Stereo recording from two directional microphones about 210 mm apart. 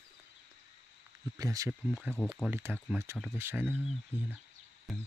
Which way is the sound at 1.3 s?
15° right (ahead or behind).